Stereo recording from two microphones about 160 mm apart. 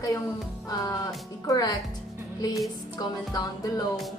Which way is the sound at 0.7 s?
25° left (ahead or behind).